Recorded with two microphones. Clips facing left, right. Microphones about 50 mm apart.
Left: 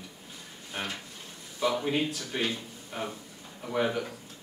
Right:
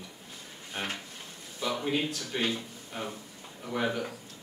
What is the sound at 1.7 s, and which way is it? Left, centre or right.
Speech, centre.